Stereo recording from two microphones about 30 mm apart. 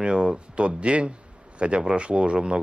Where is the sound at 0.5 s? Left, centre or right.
Right.